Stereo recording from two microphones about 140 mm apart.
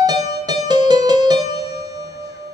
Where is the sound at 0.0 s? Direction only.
30° right (ahead or behind).